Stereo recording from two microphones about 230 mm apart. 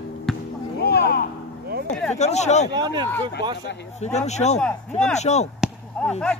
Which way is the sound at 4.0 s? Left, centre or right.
Left.